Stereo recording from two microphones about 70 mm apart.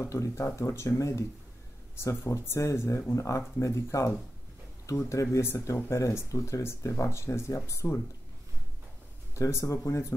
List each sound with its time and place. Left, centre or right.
0.1 s speech: left
9.3 s speech: left